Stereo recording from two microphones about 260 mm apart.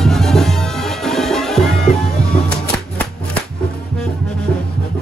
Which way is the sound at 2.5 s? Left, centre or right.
Centre.